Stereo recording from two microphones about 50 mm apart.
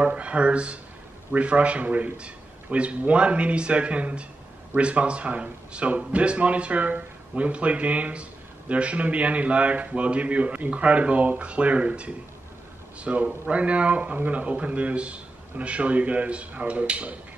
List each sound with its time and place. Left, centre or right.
0.0 s speech: right